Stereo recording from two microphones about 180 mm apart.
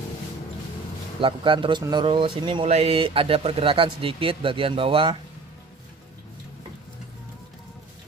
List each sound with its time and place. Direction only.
1.2 s speech: 30° right (ahead or behind)